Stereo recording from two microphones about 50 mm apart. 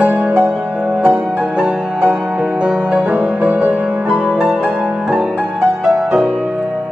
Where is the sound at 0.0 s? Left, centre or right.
Right.